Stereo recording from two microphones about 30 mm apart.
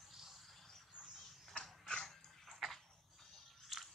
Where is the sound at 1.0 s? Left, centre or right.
Right.